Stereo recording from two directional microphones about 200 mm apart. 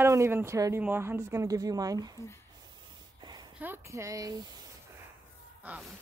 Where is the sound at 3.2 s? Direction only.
20° right (ahead or behind).